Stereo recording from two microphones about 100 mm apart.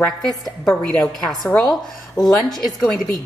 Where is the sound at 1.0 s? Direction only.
5° left (ahead or behind).